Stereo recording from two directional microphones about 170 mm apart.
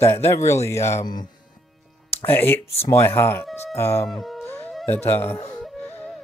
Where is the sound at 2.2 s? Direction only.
15° left (ahead or behind).